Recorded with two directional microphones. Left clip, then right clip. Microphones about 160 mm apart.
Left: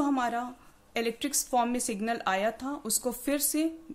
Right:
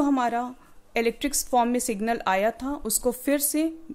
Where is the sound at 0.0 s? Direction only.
35° right (ahead or behind).